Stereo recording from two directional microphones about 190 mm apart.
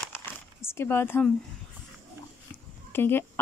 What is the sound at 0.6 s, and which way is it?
Speech, 10° left (ahead or behind).